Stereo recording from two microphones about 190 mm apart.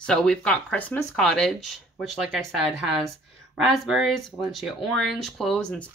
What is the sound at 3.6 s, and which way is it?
Speech, 5° right (ahead or behind).